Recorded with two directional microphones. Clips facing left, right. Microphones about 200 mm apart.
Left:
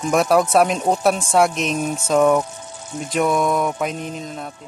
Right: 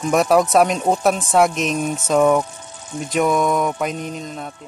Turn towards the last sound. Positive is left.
turn(degrees=0)  # may be behind; listen again after turning